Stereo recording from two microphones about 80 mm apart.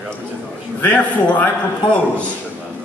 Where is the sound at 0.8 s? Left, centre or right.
Centre.